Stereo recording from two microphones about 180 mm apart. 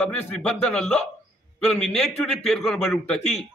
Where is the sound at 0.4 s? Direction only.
5° left (ahead or behind).